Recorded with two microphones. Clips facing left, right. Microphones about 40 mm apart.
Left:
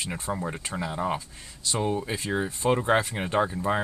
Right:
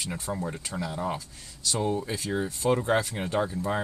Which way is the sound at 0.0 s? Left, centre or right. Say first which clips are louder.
Left 1 dB; left.